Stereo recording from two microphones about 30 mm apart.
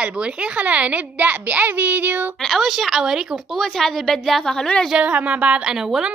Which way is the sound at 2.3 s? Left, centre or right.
Centre.